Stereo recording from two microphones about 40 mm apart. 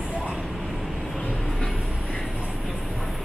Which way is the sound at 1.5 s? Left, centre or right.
Centre.